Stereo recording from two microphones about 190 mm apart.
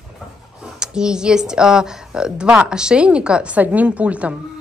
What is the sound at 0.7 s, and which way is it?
Speech, 5° right (ahead or behind).